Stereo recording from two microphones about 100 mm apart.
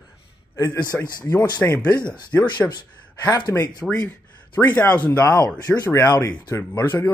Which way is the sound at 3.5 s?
30° left (ahead or behind).